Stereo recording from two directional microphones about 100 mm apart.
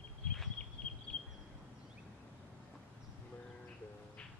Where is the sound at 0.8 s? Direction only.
10° left (ahead or behind).